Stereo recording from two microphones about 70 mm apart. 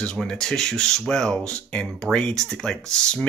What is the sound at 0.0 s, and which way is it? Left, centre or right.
Speech, centre.